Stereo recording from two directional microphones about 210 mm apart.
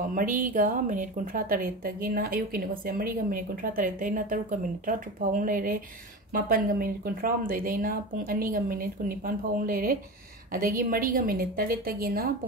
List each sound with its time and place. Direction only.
0.1 s a woman's voice: 40° right (ahead or behind)